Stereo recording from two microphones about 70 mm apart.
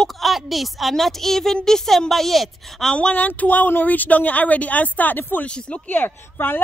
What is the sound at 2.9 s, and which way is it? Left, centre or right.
Speech, centre.